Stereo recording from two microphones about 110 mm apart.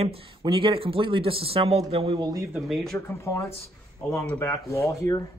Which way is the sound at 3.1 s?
25° left (ahead or behind).